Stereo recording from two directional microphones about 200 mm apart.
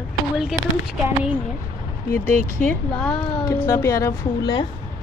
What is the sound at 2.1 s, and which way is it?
Speech, 10° left (ahead or behind).